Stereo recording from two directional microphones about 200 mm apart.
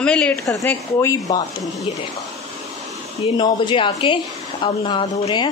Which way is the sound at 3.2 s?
25° left (ahead or behind).